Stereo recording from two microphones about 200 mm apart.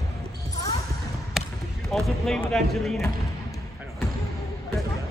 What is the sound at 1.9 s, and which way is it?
Speech, 5° left (ahead or behind).